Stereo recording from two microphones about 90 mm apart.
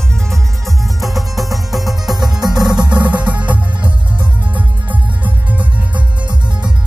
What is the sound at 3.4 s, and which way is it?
Music, 15° right (ahead or behind).